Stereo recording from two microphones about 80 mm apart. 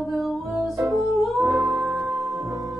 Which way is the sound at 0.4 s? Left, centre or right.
Centre.